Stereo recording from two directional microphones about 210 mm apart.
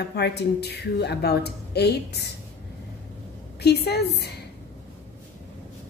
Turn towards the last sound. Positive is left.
turn(degrees=50)  # may be behind; listen again after turning